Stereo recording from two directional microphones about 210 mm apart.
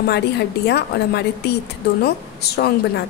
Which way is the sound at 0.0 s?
50° left (ahead or behind).